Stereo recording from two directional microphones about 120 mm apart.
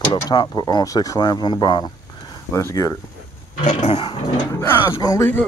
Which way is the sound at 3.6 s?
55° left (ahead or behind).